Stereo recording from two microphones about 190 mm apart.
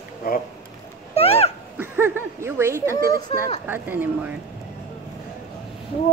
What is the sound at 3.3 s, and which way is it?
Speech, 30° left (ahead or behind).